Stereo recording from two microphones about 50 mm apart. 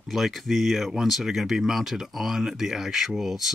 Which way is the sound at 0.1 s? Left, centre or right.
Centre.